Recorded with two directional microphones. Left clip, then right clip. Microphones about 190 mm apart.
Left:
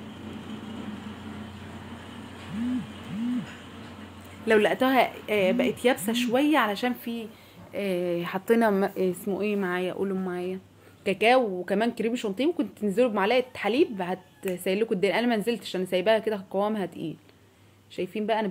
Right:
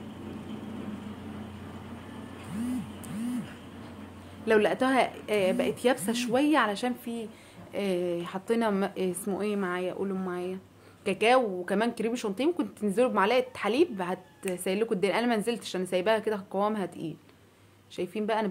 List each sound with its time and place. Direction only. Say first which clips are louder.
4.5 s a woman's voice: left 2 dB; 10° left (ahead or behind)
9.6 s a woman's voice: left 3 dB; 25° left (ahead or behind)